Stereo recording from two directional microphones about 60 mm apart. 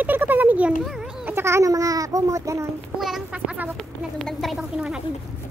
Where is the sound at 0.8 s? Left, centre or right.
Centre.